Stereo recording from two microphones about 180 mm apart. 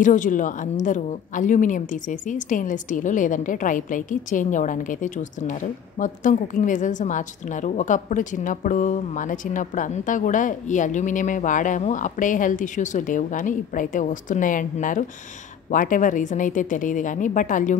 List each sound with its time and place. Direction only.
0.0 s a woman's voice: 45° left (ahead or behind)